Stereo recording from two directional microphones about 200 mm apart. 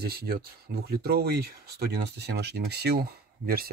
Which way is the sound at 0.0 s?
50° right (ahead or behind).